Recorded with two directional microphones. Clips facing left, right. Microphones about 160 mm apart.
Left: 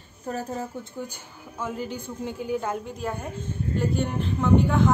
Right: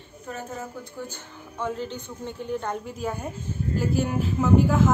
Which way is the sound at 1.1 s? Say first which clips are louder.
Right 2 dB; 5° left (ahead or behind).